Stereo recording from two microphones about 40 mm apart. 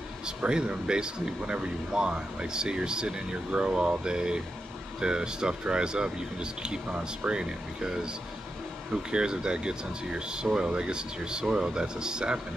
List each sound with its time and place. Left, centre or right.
0.4 s speech: right